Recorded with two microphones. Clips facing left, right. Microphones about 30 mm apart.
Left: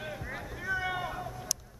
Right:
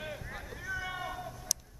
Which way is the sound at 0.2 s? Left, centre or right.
Centre.